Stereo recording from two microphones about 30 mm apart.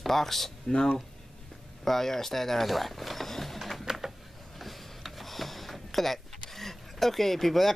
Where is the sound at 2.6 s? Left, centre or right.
Centre.